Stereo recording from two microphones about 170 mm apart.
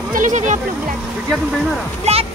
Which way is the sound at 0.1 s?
45° right (ahead or behind).